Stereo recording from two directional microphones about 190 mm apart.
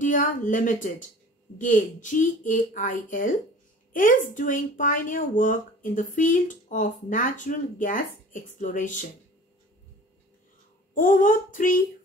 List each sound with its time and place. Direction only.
0.0 s a woman's voice: 45° left (ahead or behind)
11.0 s speech: 45° left (ahead or behind)